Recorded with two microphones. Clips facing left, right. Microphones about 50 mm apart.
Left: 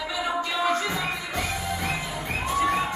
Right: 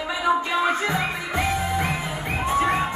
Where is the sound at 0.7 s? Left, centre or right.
Right.